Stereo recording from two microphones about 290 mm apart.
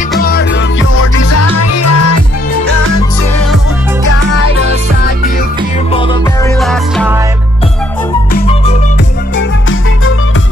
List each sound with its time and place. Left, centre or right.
0.2 s music: left
5.9 s music: centre
6.6 s music: centre
8.3 s music: left
9.4 s music: left